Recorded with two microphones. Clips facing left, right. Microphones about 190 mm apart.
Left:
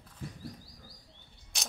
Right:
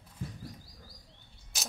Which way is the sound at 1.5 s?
Centre (ahead or behind).